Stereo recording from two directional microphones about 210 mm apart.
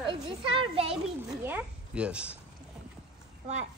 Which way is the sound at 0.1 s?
25° right (ahead or behind).